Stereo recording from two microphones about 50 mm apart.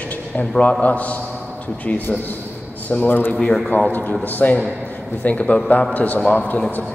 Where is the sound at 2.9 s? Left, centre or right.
Left.